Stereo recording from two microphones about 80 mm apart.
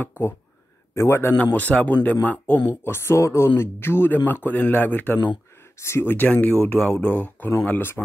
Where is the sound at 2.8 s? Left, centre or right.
Left.